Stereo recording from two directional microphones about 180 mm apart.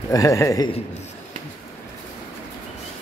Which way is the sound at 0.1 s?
20° left (ahead or behind).